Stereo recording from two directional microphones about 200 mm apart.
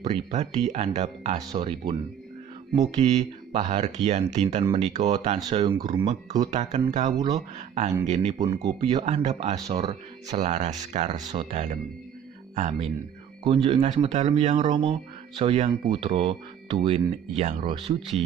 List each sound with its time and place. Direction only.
0.0 s speech: 35° right (ahead or behind)
1.5 s speech: 20° right (ahead or behind)
3.0 s speech: 35° right (ahead or behind)
7.2 s speech: 20° right (ahead or behind)
7.5 s speech: 35° right (ahead or behind)